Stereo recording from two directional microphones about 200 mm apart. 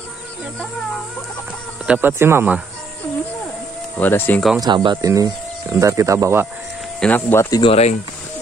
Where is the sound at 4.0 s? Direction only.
10° left (ahead or behind).